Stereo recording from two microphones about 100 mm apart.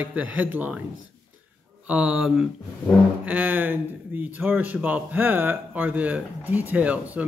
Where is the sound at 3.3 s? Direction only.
20° right (ahead or behind).